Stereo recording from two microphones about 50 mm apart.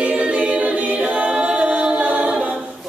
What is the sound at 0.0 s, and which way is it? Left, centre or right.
A capella, right.